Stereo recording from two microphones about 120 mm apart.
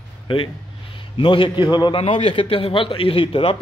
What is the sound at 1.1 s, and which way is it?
A man's voice, 40° left (ahead or behind).